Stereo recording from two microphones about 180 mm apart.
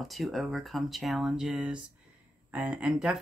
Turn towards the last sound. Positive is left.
turn(degrees=-5)  # may be behind; listen again after turning